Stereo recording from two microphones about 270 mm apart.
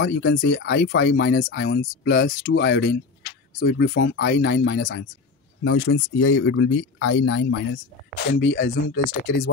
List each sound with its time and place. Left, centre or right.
0.0 s speech: left